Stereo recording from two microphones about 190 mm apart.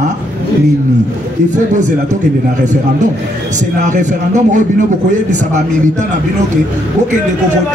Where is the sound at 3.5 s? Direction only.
40° right (ahead or behind).